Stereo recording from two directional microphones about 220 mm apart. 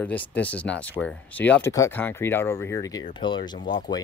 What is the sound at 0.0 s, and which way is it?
Speech, 5° left (ahead or behind).